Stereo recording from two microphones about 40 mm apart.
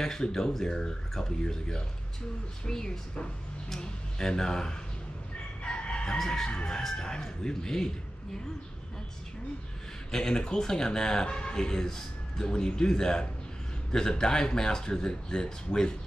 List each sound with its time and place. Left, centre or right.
0.0 s speech: centre
5.6 s chicken: left
6.1 s speech: centre
6.5 s chicken: left
6.8 s speech: centre
10.1 s speech: centre